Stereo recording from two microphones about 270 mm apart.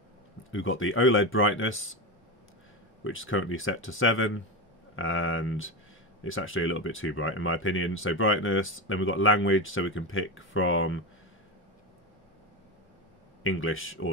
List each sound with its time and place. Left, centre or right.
0.4 s speech: left
3.0 s speech: left
13.4 s speech: left